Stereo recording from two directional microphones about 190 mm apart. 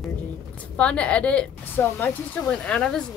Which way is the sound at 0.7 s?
5° left (ahead or behind).